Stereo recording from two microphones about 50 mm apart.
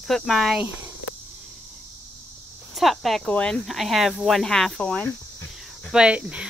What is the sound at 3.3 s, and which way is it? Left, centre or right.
Speech, left.